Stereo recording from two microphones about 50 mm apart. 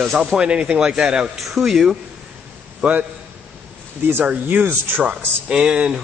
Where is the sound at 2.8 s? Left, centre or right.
Right.